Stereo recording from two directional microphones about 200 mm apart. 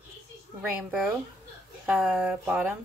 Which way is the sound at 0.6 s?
Centre (ahead or behind).